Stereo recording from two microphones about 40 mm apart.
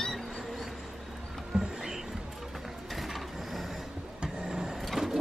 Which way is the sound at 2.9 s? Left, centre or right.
Centre.